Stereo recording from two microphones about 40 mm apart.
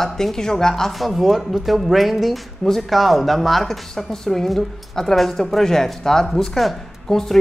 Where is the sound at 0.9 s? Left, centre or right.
Centre.